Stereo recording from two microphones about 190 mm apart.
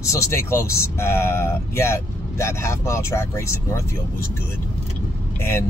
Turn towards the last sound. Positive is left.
turn(degrees=15)  # may be behind; listen again after turning